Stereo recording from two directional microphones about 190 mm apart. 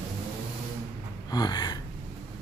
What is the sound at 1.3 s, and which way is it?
Speech, 20° left (ahead or behind).